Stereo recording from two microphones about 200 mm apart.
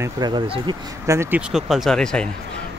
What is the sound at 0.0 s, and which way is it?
Speech, 20° right (ahead or behind).